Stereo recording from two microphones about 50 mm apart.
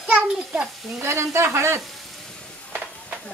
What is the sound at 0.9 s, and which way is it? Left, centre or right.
Speech, right.